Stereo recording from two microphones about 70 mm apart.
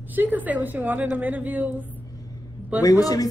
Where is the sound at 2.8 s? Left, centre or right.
Left.